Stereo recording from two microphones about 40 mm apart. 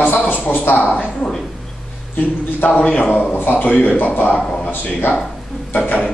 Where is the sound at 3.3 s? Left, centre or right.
Left.